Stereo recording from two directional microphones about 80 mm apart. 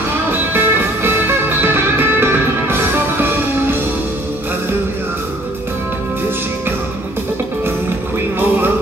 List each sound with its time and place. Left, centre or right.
0.5 s music: right
8.4 s music: right